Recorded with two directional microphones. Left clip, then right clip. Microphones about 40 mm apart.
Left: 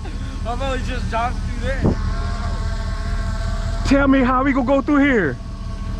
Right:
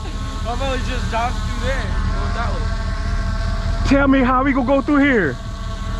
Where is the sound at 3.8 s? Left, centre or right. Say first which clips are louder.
Right 1 dB; centre.